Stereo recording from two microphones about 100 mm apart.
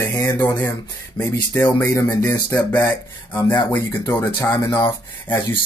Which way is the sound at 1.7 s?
15° left (ahead or behind).